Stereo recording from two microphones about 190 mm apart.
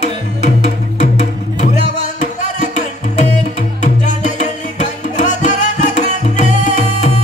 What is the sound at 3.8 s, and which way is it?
Music, 40° left (ahead or behind).